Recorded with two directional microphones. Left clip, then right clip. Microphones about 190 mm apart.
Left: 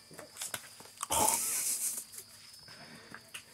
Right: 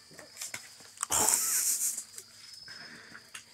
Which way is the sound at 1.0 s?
Centre (ahead or behind).